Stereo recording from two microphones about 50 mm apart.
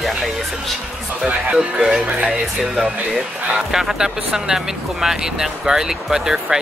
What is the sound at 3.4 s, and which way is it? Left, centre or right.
Speech, centre.